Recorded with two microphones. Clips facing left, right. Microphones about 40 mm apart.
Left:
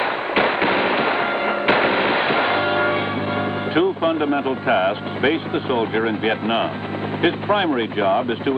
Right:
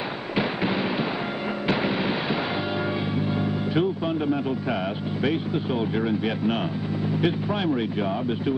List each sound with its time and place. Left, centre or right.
0.4 s fireworks: left
1.7 s music: left
7.2 s speech: left